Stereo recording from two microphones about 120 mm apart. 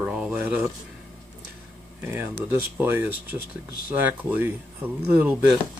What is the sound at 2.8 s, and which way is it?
Speech, 15° right (ahead or behind).